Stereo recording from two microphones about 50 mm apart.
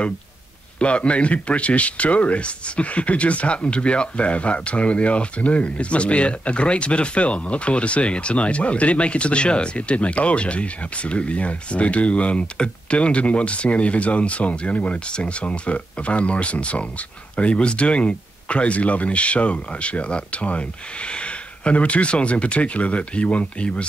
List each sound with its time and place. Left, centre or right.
0.7 s speech: left